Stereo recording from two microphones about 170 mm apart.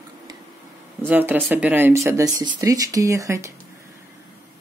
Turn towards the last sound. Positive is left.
turn(degrees=-15)  # may be behind; listen again after turning